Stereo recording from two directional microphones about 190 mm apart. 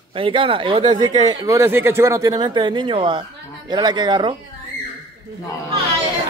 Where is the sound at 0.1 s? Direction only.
25° right (ahead or behind).